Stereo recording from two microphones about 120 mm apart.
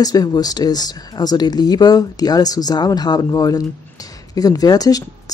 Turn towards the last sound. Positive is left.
turn(degrees=30)  # may be behind; listen again after turning